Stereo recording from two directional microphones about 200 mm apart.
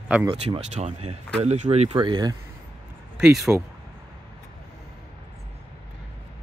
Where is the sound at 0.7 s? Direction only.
35° right (ahead or behind).